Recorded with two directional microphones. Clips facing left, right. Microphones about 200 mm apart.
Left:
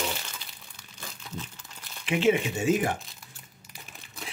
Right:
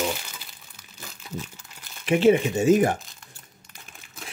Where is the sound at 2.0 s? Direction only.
40° right (ahead or behind).